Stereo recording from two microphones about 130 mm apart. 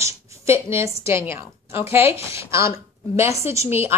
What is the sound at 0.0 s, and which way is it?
A woman's voice, 20° right (ahead or behind).